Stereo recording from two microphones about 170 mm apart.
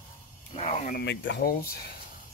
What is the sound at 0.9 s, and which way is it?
Speech, 85° left.